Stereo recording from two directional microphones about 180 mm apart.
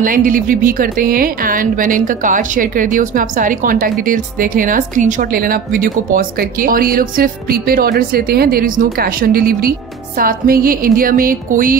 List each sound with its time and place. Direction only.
0.0 s speech: 50° right (ahead or behind)